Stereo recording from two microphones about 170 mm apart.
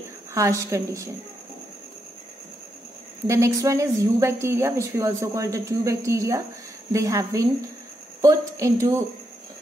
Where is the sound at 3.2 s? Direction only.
15° right (ahead or behind).